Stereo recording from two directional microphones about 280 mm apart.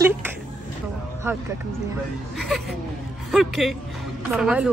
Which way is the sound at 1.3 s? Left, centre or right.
Centre.